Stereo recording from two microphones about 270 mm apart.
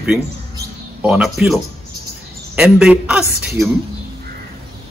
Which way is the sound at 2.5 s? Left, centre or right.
Centre.